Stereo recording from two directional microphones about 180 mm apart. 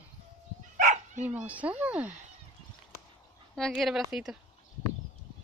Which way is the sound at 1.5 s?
10° right (ahead or behind).